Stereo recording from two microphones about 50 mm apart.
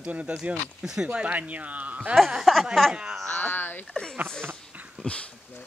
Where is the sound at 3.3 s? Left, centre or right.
Left.